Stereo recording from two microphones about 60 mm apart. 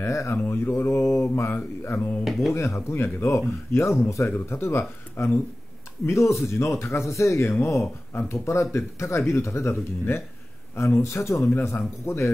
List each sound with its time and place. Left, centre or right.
0.0 s speech: left
1.5 s speech: left
2.2 s speech: centre
2.5 s speech: left
3.3 s speech: left
6.0 s speech: left